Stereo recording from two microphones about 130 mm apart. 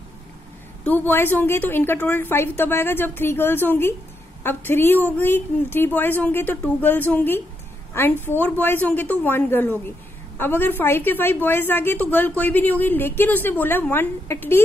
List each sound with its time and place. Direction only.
0.8 s a woman's voice: 15° left (ahead or behind)